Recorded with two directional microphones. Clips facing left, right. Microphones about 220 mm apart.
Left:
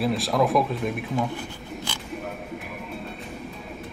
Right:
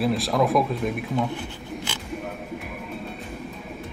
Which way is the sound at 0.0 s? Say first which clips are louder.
Right 1 dB; centre (ahead or behind).